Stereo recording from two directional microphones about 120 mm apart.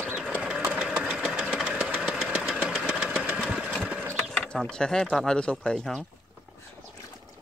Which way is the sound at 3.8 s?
15° right (ahead or behind).